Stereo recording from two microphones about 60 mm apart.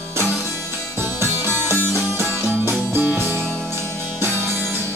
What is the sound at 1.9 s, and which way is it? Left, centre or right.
Music, right.